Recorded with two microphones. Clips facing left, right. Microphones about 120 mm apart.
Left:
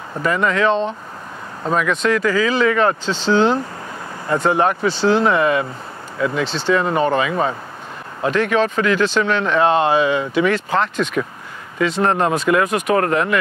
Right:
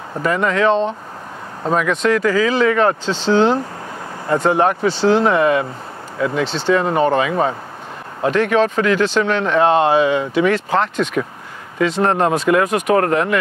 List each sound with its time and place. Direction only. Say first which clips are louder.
0.2 s speech: right 1 dB; 40° right (ahead or behind)
2.0 s speech: right 2 dB; 45° right (ahead or behind)
6.4 s speech: right 2 dB; 25° right (ahead or behind)
6.7 s speech: right 2 dB; 40° right (ahead or behind)